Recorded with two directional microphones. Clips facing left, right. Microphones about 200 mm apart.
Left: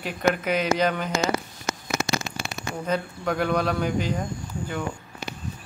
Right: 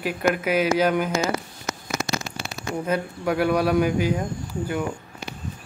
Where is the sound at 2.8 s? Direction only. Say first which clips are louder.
Right 1 dB; 10° right (ahead or behind).